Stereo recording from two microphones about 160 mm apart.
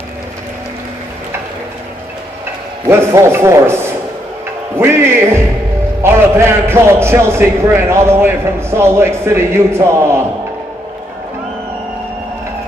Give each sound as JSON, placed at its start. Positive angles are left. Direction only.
{"t": 2.9, "sound": "a man's voice", "side_deg": -15}